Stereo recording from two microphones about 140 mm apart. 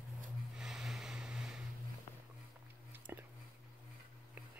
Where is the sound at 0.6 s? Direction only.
5° right (ahead or behind).